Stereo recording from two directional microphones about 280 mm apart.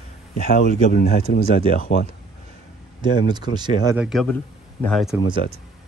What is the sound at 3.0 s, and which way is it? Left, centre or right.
Speech, centre.